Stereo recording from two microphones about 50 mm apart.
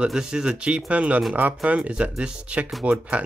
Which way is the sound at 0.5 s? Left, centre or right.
Right.